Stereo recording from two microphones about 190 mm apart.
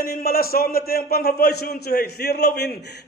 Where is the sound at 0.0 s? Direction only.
50° left (ahead or behind).